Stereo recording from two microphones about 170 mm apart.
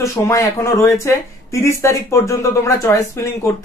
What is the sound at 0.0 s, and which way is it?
A man's voice, 15° left (ahead or behind).